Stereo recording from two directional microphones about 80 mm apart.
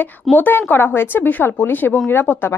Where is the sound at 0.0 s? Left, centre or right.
Left.